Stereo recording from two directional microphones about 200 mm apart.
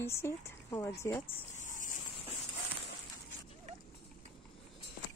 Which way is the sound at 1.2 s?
40° left (ahead or behind).